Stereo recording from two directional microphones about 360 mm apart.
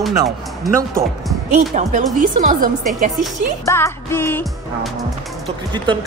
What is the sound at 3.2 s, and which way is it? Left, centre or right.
Music, centre.